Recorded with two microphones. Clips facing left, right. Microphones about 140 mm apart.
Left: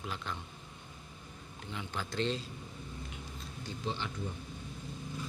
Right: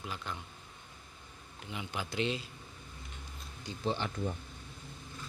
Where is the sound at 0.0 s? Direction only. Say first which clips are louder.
Left 1 dB; centre (ahead or behind).